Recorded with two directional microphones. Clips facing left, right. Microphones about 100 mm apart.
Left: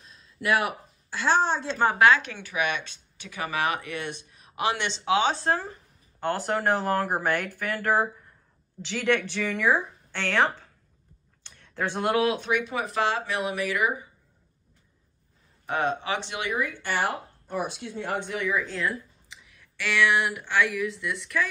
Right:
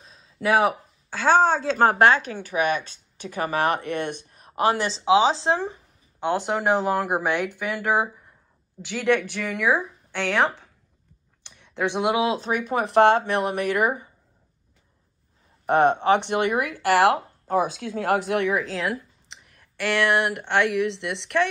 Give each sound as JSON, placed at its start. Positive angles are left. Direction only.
{"t": 1.8, "sound": "a woman's voice", "side_deg": -90}
{"t": 2.0, "sound": "speech", "side_deg": -40}
{"t": 12.3, "sound": "speech", "side_deg": -35}
{"t": 15.6, "sound": "speech", "side_deg": -60}
{"t": 19.5, "sound": "speech", "side_deg": -50}